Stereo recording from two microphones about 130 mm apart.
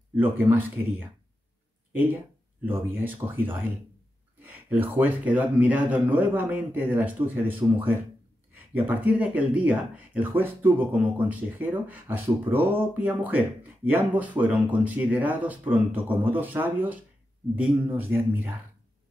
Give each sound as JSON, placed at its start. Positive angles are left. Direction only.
{"t": 0.1, "sound": "speech", "side_deg": -15}
{"t": 2.6, "sound": "speech", "side_deg": -15}
{"t": 8.7, "sound": "speech", "side_deg": -15}